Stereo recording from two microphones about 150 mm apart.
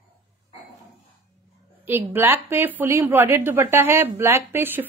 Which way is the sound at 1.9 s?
15° right (ahead or behind).